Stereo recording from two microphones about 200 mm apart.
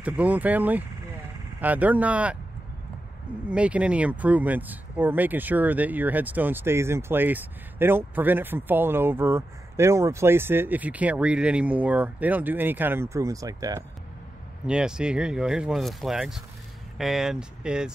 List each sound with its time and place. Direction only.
0.0 s speech: 5° right (ahead or behind)
3.4 s speech: 5° right (ahead or behind)
14.7 s speech: 5° right (ahead or behind)